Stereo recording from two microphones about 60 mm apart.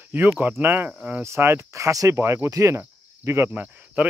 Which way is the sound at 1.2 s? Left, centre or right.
Right.